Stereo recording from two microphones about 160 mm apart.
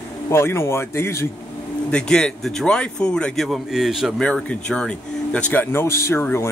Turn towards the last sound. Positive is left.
turn(degrees=15)  # may be behind; listen again after turning